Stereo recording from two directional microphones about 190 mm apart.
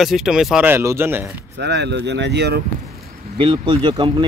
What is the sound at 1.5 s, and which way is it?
Speech, 60° right (ahead or behind).